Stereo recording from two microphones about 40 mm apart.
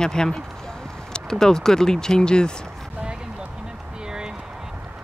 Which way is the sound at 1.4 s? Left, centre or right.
Centre.